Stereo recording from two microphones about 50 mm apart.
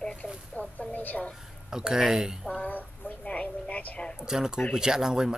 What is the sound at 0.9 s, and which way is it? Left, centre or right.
Speech, left.